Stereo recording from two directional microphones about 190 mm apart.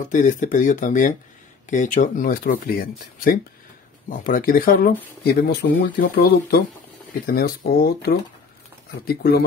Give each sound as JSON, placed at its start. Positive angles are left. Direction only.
{"t": 0.1, "sound": "speech", "side_deg": 40}